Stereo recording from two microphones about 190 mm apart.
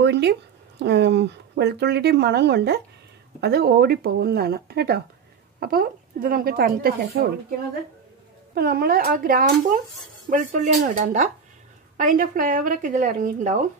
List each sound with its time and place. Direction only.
0.0 s speech: 65° right (ahead or behind)
8.5 s speech: 55° right (ahead or behind)